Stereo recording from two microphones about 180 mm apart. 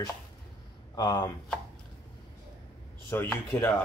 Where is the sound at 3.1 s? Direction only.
15° left (ahead or behind).